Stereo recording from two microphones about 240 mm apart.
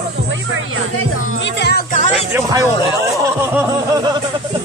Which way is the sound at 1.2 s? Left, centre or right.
Left.